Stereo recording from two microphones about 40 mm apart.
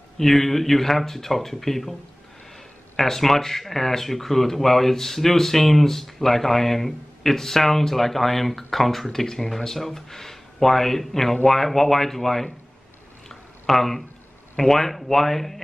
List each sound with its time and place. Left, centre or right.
0.2 s speech: centre
3.0 s speech: centre
13.3 s a sound: centre
14.6 s speech: centre